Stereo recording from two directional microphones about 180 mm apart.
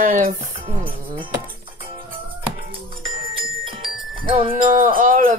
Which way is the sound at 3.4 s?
30° right (ahead or behind).